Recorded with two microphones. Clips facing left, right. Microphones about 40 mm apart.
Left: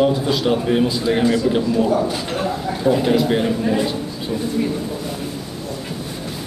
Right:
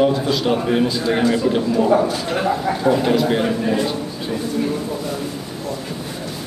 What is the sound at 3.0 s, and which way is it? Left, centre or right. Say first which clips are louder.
Speech: even; centre.